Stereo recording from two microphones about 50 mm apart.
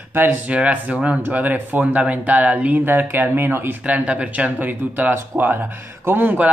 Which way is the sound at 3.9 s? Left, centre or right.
Right.